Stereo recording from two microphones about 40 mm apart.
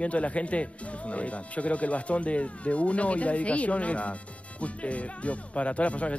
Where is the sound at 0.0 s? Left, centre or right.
Left.